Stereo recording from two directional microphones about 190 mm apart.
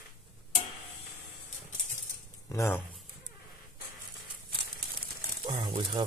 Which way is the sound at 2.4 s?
15° left (ahead or behind).